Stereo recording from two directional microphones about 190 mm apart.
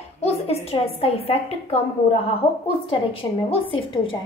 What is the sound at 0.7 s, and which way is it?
A woman's voice, 30° left (ahead or behind).